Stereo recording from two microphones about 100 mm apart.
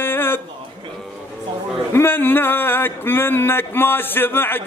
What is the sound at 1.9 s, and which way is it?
Speech, 20° left (ahead or behind).